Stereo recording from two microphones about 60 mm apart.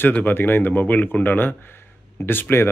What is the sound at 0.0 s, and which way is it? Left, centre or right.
Speech, left.